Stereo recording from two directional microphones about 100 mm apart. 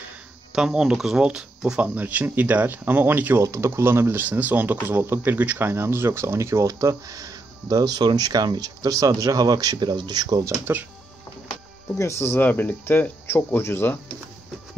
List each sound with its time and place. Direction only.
0.5 s speech: 5° right (ahead or behind); by 10.5 s 40° right (ahead or behind)
10.6 s speech: 20° right (ahead or behind)
12.0 s speech: 25° left (ahead or behind)